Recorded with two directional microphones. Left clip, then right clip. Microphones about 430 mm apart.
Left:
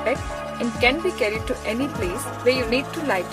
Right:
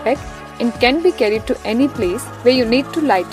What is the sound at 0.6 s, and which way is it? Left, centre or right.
Speech, centre.